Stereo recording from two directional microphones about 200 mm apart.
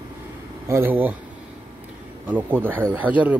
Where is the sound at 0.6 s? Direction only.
10° right (ahead or behind).